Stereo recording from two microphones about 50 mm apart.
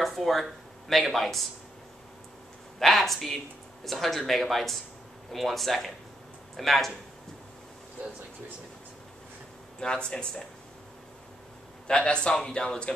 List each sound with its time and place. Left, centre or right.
0.0 s speech: centre
2.8 s speech: centre
8.0 s speech: right
9.8 s speech: centre
11.9 s a man's voice: centre